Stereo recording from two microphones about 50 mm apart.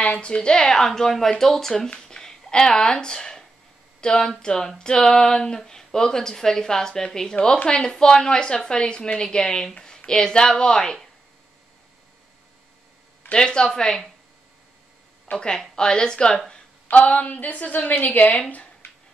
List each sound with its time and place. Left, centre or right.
0.0 s speech: left; by 1.9 s centre
1.9 s a sound: centre
4.0 s speech: centre
13.3 s speech: centre
15.3 s speech: centre
16.9 s a woman's voice: left